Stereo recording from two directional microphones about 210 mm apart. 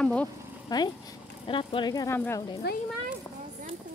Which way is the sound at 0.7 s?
20° left (ahead or behind).